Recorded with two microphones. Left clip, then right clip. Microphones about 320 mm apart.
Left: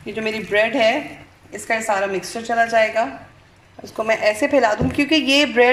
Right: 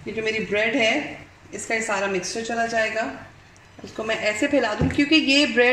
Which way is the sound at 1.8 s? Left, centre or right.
Left.